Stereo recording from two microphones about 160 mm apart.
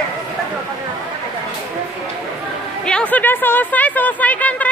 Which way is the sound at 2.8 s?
5° left (ahead or behind).